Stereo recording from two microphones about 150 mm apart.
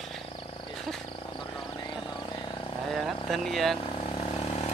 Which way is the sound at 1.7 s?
25° left (ahead or behind).